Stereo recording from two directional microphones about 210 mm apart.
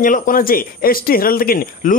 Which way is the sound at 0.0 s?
40° left (ahead or behind).